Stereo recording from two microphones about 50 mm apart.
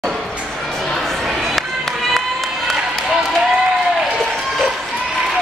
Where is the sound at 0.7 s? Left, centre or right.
Centre.